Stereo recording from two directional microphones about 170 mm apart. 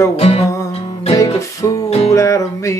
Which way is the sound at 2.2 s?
15° left (ahead or behind).